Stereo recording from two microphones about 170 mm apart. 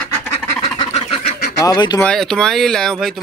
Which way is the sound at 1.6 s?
25° left (ahead or behind).